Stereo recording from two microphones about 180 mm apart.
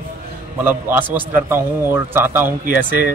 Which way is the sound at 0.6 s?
10° right (ahead or behind).